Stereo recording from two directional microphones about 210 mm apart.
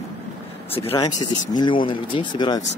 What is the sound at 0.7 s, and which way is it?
Speech, 25° left (ahead or behind).